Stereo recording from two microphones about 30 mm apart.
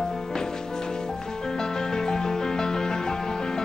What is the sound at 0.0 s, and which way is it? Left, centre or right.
Music, centre.